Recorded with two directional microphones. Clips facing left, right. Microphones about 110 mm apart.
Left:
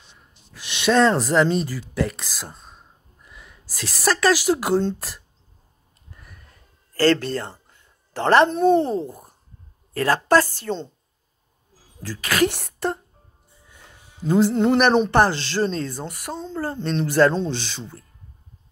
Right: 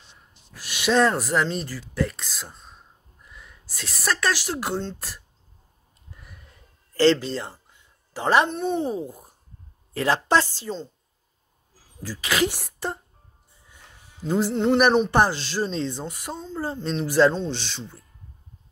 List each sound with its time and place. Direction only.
0.7 s speech: 10° right (ahead or behind)
3.3 s a sound: 5° left (ahead or behind)
3.7 s speech: 5° left (ahead or behind)
7.7 s a sound: 10° right (ahead or behind)
8.5 s speech: centre (ahead or behind); by 10.4 s 20° right (ahead or behind)
10.7 s speech: centre (ahead or behind)
12.2 s speech: 15° right (ahead or behind)
14.2 s speech: centre (ahead or behind)
14.8 s speech: 10° right (ahead or behind)
16.1 s speech: 15° right (ahead or behind); by 17.9 s 5° left (ahead or behind)